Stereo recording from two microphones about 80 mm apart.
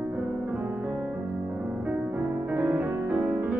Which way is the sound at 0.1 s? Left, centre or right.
Right.